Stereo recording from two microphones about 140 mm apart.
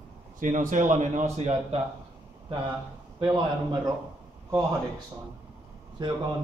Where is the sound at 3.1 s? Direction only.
35° right (ahead or behind).